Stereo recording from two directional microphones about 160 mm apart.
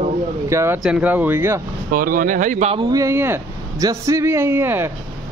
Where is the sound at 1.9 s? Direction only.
60° right (ahead or behind).